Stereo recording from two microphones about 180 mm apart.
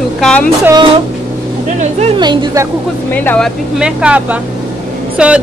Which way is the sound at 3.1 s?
10° left (ahead or behind).